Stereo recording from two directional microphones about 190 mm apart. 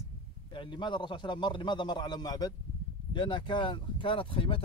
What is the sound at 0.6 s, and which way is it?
Speech, 25° left (ahead or behind).